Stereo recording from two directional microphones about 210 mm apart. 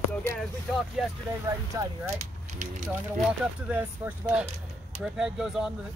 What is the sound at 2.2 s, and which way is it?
Speech, 35° right (ahead or behind).